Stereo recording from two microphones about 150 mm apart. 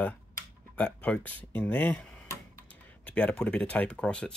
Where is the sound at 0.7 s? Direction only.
10° left (ahead or behind).